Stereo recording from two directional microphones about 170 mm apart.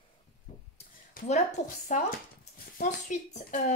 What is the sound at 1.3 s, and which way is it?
Speech, 45° left (ahead or behind).